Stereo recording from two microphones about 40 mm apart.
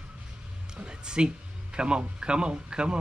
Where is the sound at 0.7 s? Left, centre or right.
Centre.